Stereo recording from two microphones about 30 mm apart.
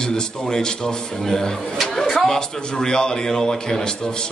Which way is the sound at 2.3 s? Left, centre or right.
Left.